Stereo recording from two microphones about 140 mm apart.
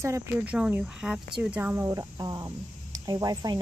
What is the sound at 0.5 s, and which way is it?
Cricket, 5° right (ahead or behind).